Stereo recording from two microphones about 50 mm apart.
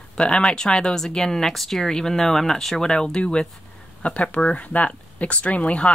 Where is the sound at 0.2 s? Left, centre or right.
Centre.